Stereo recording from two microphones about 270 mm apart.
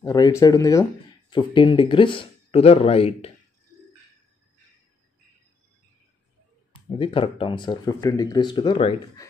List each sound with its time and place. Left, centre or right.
0.0 s speech: centre
6.7 s speech: centre